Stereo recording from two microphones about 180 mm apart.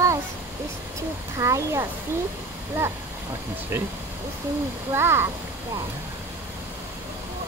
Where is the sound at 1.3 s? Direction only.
15° right (ahead or behind).